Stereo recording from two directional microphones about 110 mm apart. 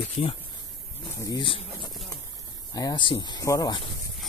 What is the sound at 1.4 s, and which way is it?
Speech, 50° left (ahead or behind).